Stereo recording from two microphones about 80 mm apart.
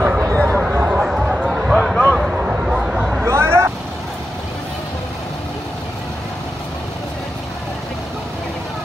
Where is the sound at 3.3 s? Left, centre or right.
Right.